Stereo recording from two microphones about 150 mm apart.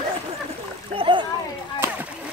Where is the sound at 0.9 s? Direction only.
35° right (ahead or behind).